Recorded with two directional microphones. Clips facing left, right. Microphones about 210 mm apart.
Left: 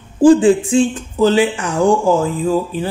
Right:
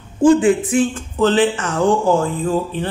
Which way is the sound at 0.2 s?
30° left (ahead or behind).